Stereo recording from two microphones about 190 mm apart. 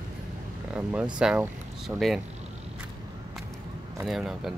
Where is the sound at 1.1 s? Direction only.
5° right (ahead or behind).